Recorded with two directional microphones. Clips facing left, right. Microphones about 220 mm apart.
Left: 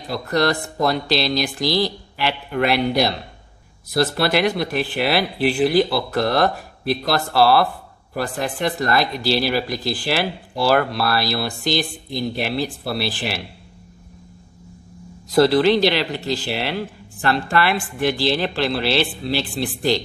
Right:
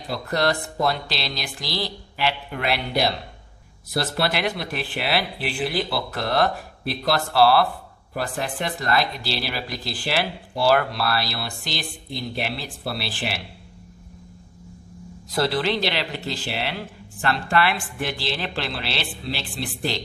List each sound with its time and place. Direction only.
0.4 s speech: 40° left (ahead or behind)
15.3 s speech: 40° left (ahead or behind)